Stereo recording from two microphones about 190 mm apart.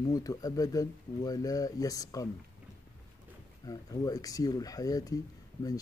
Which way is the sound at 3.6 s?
20° left (ahead or behind).